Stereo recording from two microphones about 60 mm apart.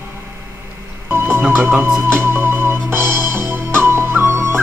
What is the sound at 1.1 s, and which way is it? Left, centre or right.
Music, right.